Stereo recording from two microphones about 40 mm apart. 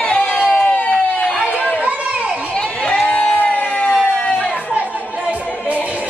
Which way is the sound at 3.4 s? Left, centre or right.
Left.